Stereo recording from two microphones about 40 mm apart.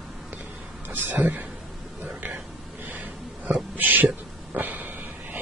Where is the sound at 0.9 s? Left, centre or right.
Right.